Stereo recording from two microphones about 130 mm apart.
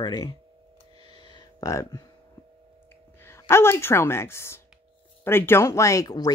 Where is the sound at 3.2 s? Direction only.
20° left (ahead or behind).